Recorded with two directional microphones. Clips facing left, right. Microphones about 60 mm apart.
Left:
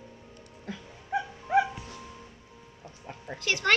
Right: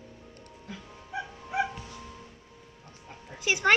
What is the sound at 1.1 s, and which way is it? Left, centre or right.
Dog, left.